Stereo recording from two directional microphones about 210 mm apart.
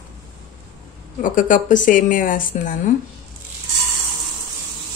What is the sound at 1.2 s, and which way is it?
Speech, 40° left (ahead or behind).